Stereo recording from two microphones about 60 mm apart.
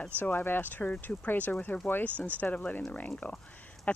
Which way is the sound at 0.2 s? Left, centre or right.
Left.